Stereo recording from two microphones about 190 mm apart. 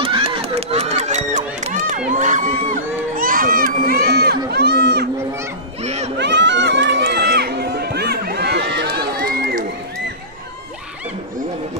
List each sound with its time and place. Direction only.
0.0 s run: 30° right (ahead or behind); by 5.0 s 60° right (ahead or behind)
5.8 s music: 35° right (ahead or behind)
6.1 s run: 65° right (ahead or behind)